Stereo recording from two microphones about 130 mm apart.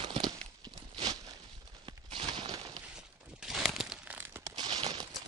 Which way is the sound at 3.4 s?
Centre (ahead or behind).